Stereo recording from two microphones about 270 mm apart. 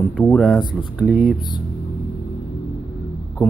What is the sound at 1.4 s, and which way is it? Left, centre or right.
Speech, centre.